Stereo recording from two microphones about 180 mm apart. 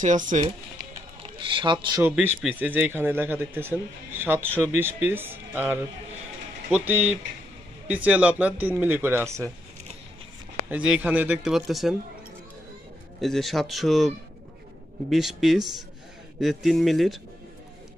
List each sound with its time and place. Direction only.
0.0 s speech: 45° right (ahead or behind)
1.2 s speech: 30° right (ahead or behind)
2.0 s a man's voice: 10° right (ahead or behind)
10.7 s speech: 5° right (ahead or behind)
13.2 s speech: centre (ahead or behind)